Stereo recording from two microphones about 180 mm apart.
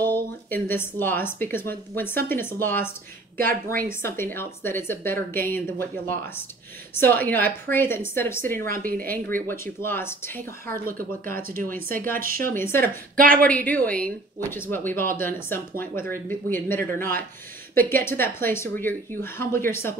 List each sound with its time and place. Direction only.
0.0 s speech: 10° left (ahead or behind)
3.3 s speech: 50° right (ahead or behind)
4.0 s speech: 10° left (ahead or behind)
8.5 s speech: 55° right (ahead or behind)
9.1 s speech: 10° left (ahead or behind)
10.7 s speech: 50° right (ahead or behind)
12.4 s speech: 15° left (ahead or behind)
12.8 s speech: 50° right (ahead or behind)
13.4 s speech: 10° left (ahead or behind)